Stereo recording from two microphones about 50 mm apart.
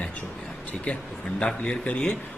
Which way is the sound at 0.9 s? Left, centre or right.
Left.